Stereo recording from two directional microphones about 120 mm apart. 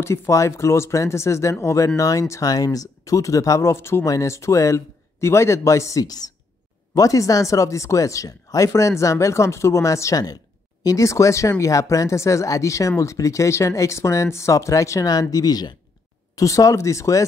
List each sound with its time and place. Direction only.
0.0 s speech: 25° left (ahead or behind)